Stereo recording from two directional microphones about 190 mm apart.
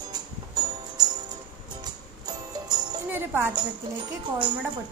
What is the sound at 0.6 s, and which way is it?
Music, 20° right (ahead or behind).